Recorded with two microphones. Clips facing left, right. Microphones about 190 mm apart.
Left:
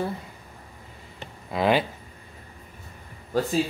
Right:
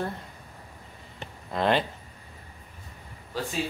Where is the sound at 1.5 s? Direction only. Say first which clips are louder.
Left 2 dB; 5° left (ahead or behind).